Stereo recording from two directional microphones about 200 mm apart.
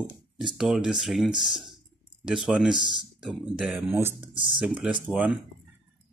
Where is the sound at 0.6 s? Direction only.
5° right (ahead or behind).